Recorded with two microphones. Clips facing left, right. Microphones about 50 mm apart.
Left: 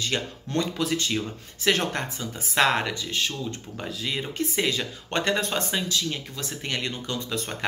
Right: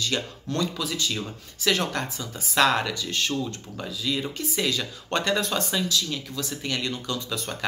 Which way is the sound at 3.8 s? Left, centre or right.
Left.